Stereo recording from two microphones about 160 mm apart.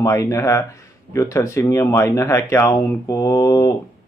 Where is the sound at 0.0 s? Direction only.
20° left (ahead or behind).